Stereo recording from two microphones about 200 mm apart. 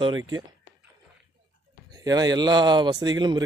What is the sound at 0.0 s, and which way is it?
Speech, 20° right (ahead or behind).